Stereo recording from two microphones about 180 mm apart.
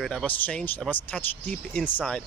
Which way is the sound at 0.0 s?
5° left (ahead or behind).